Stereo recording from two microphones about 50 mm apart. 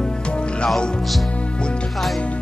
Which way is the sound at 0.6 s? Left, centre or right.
Centre.